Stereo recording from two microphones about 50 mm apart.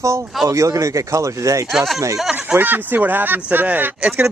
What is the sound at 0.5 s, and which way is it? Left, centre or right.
Speech, right.